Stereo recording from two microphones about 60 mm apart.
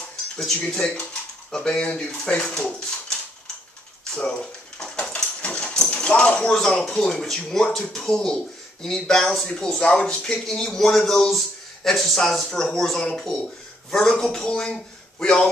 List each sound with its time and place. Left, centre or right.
1.5 s speech: centre
4.1 s a sound: centre
5.9 s speech: centre
6.5 s a man's voice: centre